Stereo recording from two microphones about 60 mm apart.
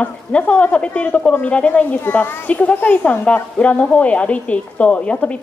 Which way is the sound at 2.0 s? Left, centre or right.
Left.